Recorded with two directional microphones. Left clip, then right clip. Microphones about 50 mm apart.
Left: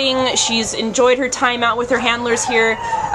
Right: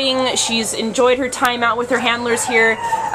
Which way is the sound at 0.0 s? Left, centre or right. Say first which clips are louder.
Left 1 dB; centre.